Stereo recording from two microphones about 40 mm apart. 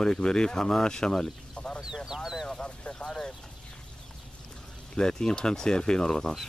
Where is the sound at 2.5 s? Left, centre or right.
Left.